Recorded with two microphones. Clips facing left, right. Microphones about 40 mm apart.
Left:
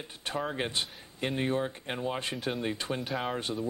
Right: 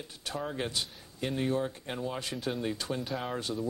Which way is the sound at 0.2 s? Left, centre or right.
Left.